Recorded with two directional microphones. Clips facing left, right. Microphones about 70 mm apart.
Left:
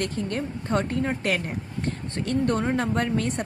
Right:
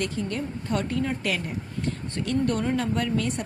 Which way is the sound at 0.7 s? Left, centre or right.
Left.